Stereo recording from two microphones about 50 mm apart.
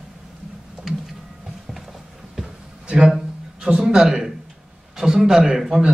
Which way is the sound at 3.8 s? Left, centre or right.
Centre.